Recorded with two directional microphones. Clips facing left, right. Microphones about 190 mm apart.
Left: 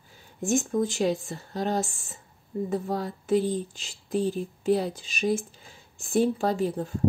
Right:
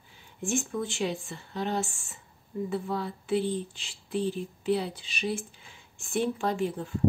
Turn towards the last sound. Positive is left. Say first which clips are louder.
# left 3 dB
turn(degrees=40)  # may be behind; listen again after turning